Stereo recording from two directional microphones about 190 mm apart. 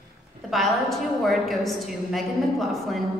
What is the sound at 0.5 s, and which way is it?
A woman's voice, centre (ahead or behind).